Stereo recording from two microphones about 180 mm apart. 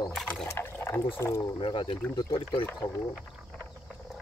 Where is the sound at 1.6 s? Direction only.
30° left (ahead or behind).